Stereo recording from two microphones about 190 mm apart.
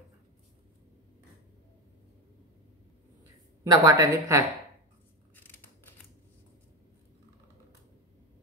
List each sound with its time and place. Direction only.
3.6 s speech: 20° right (ahead or behind)
5.3 s scissors: 10° left (ahead or behind)